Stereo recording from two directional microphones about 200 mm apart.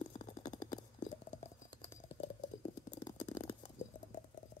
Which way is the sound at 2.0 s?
35° left (ahead or behind).